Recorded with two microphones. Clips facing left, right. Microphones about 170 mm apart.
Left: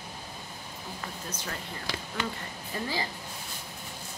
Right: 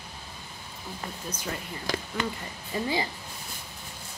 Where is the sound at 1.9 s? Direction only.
45° right (ahead or behind).